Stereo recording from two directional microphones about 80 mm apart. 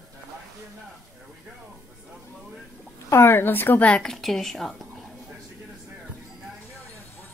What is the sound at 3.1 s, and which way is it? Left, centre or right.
Speech, left.